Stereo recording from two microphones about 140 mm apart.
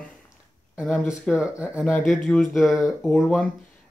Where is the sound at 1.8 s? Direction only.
5° left (ahead or behind).